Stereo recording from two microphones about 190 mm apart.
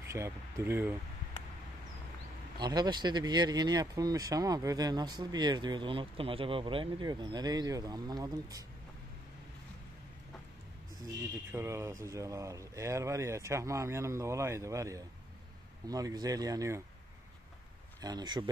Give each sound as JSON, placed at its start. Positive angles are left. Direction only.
{"t": 0.1, "sound": "speech", "side_deg": -15}
{"t": 2.6, "sound": "speech", "side_deg": -20}
{"t": 11.5, "sound": "speech", "side_deg": -15}
{"t": 18.0, "sound": "speech", "side_deg": -20}